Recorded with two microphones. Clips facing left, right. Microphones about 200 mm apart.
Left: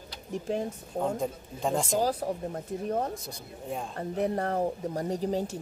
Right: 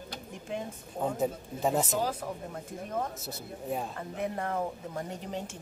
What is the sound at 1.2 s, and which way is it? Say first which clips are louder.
Speech: right 2 dB; 5° right (ahead or behind).